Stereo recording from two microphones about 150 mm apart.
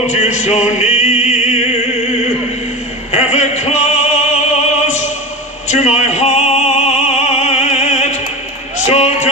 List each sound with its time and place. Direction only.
0.0 s music: 50° left (ahead or behind)
3.1 s opera: 50° left (ahead or behind)
8.8 s a sound: 50° left (ahead or behind)